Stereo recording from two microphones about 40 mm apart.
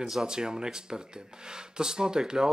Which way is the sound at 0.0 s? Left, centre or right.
Centre.